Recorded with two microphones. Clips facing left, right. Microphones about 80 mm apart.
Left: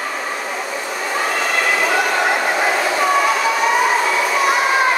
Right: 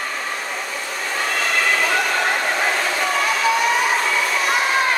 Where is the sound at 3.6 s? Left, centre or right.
Centre.